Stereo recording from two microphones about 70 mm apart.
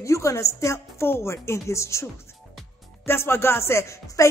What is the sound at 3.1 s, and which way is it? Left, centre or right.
Speech, left.